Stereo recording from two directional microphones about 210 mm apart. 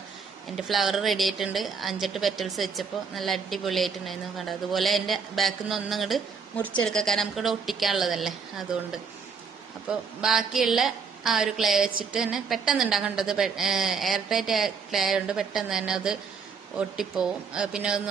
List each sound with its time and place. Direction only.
0.6 s a woman's voice: centre (ahead or behind)
9.8 s a woman's voice: centre (ahead or behind)